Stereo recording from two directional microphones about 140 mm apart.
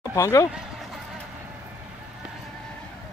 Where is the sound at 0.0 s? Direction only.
25° left (ahead or behind).